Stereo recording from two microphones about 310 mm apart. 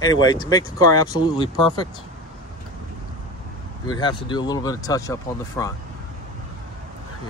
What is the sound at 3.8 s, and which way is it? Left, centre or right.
Speech, centre.